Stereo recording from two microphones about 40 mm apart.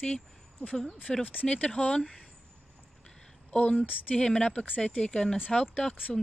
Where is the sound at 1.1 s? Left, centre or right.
Centre.